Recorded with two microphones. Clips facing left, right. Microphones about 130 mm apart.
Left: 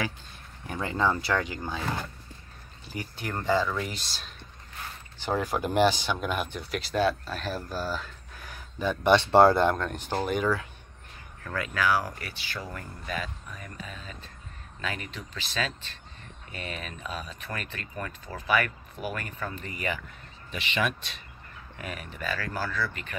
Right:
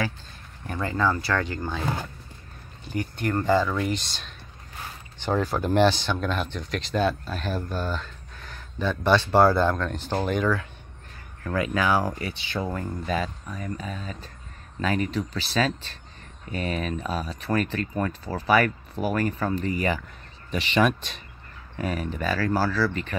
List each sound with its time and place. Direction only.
0.7 s speech: 15° left (ahead or behind)
2.8 s speech: 5° left (ahead or behind)
11.5 s speech: 20° right (ahead or behind)